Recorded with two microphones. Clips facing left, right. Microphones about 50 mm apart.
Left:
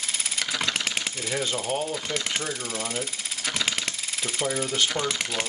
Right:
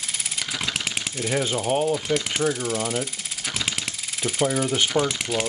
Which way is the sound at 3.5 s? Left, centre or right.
Centre.